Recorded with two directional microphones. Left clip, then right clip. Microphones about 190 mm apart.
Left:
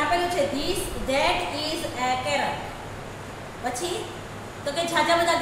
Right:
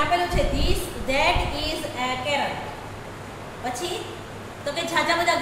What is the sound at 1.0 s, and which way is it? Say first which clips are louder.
A woman's voice: right 1 dB; centre (ahead or behind).